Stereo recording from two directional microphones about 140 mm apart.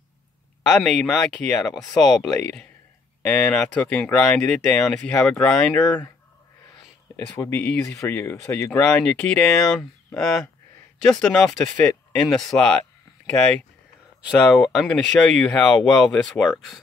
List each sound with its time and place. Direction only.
0.7 s speech: 5° left (ahead or behind)
7.2 s speech: 15° left (ahead or behind)